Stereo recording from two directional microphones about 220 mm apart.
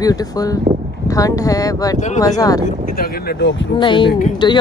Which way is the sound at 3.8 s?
20° left (ahead or behind).